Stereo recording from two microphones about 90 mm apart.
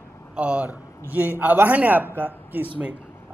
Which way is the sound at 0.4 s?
15° right (ahead or behind).